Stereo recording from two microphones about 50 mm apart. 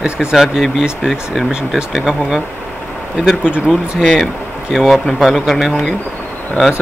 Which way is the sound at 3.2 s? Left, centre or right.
Centre.